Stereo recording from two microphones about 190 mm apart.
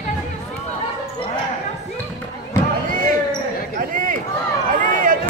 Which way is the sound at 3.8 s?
45° right (ahead or behind).